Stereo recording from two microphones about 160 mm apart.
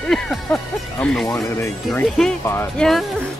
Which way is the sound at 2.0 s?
5° left (ahead or behind).